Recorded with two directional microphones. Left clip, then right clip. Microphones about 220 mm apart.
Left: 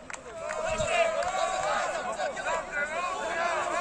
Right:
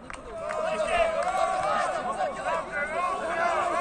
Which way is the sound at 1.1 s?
Centre (ahead or behind).